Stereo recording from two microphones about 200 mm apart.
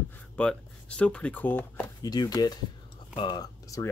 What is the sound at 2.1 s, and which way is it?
Speech, 20° left (ahead or behind).